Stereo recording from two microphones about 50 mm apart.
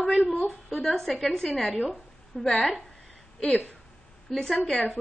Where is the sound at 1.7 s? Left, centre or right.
Left.